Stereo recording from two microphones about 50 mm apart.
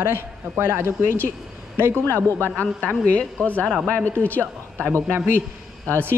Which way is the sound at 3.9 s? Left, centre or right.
Left.